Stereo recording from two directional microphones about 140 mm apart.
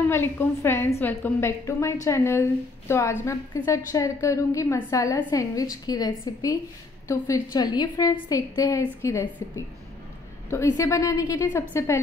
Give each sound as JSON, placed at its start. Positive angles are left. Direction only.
{"t": 0.1, "sound": "a woman's voice", "side_deg": 15}
{"t": 10.5, "sound": "a woman's voice", "side_deg": 20}